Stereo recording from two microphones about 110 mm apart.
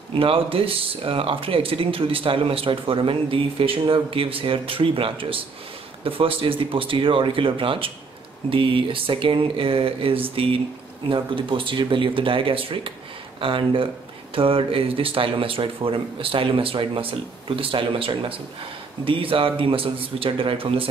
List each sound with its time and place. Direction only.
0.1 s speech: 55° right (ahead or behind)